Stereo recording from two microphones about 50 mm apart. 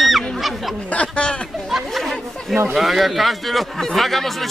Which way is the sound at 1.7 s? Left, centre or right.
Centre.